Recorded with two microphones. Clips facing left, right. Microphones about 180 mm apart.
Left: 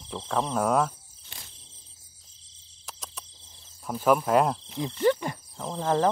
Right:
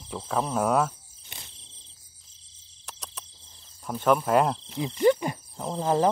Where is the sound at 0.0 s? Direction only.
5° right (ahead or behind).